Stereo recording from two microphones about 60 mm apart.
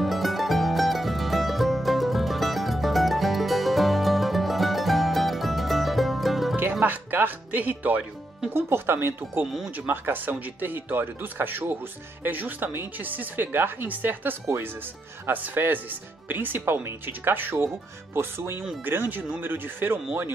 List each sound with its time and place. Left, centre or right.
0.0 s music: centre
6.7 s speech: right
8.5 s speech: right